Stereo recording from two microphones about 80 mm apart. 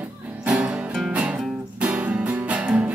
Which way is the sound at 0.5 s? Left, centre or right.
Centre.